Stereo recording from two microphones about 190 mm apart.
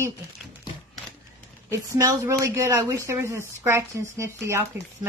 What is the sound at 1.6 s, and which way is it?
Speech, 15° right (ahead or behind).